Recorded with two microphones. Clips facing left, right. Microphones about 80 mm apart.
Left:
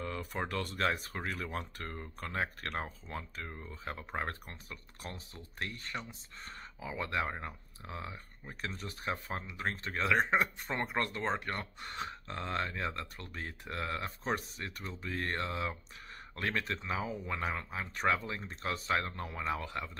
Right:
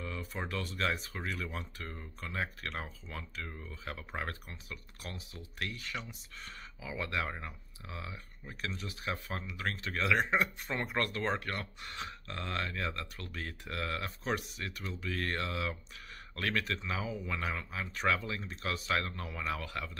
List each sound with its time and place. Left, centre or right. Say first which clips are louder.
0.0 s speech: left 2 dB; left
9.1 s speech: left 1 dB; left
10.9 s speech: right 2 dB; left